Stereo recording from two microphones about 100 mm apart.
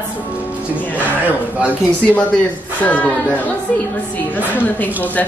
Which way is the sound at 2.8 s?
15° left (ahead or behind).